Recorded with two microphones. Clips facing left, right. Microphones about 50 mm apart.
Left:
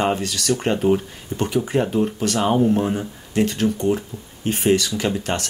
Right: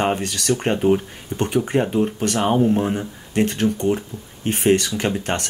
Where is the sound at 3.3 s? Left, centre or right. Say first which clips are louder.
Even; right.